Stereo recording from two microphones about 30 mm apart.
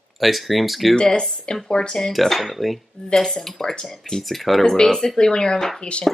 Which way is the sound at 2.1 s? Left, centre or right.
Centre.